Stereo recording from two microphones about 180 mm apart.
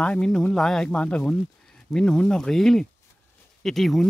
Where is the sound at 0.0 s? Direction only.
5° left (ahead or behind).